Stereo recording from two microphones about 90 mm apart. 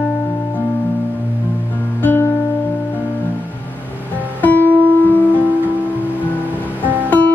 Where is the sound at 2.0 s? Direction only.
25° left (ahead or behind).